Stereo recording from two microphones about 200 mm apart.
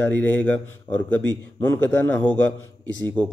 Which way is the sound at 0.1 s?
10° left (ahead or behind).